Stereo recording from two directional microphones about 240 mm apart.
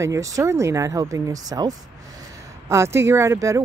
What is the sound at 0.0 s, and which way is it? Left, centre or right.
Speech, centre.